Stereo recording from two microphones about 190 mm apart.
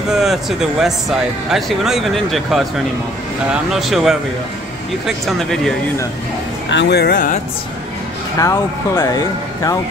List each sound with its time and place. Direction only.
0.1 s speech: centre (ahead or behind)
3.7 s speech: centre (ahead or behind)
6.7 s speech: 65° left (ahead or behind)
8.4 s speech: 15° left (ahead or behind)